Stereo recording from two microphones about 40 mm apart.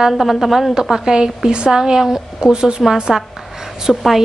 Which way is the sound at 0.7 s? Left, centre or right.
Centre.